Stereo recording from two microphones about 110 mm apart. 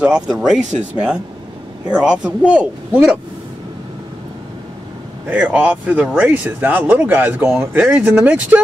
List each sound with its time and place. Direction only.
0.0 s speech: 10° right (ahead or behind)
5.3 s speech: 15° right (ahead or behind)